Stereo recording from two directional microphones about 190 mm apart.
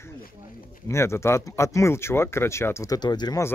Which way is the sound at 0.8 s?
15° left (ahead or behind).